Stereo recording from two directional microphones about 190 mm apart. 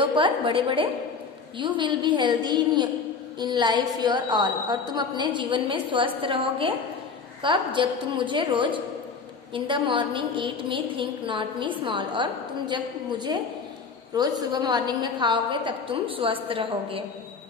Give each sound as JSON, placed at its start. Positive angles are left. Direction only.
{"t": 0.0, "sound": "a woman's voice", "side_deg": -25}